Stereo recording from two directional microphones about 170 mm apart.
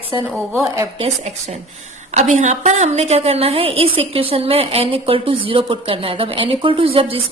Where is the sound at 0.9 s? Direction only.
40° right (ahead or behind).